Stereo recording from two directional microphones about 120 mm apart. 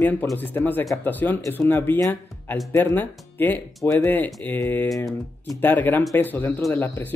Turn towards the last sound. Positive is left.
turn(degrees=15)  # may be behind; listen again after turning